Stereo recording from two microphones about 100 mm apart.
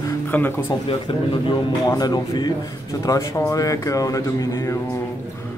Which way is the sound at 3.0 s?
35° left (ahead or behind).